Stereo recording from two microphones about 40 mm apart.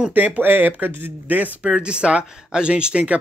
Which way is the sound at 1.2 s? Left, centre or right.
Right.